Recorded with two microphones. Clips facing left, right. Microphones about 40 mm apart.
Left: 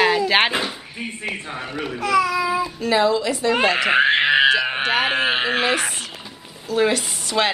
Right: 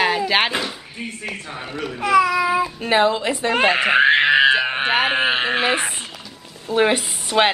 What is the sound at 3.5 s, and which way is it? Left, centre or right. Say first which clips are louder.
Speech: right 1 dB; centre.